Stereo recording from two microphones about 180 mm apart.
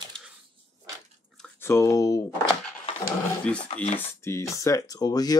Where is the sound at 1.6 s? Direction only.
15° left (ahead or behind).